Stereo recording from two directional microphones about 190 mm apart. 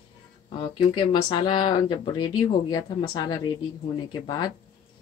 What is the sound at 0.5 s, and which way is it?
Speech, 25° left (ahead or behind).